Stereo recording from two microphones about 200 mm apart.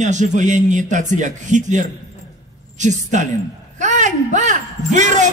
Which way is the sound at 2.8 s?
35° right (ahead or behind).